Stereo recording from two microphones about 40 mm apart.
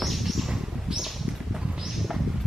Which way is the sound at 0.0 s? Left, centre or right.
Centre.